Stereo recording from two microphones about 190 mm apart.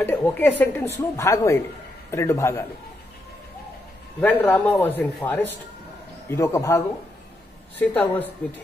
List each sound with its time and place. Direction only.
0.0 s speech: 10° left (ahead or behind)
4.2 s speech: 10° left (ahead or behind)
7.8 s speech: 10° left (ahead or behind)